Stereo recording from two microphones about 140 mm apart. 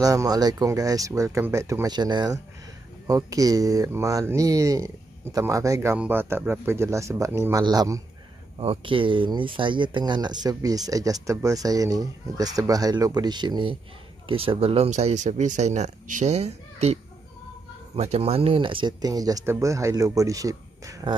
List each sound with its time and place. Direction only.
0.0 s speech: 25° right (ahead or behind)
8.5 s speech: 40° right (ahead or behind)
14.9 s speech: 55° right (ahead or behind); by 21.1 s 25° right (ahead or behind)